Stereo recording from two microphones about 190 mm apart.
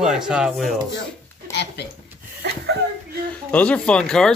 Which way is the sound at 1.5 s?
65° left (ahead or behind).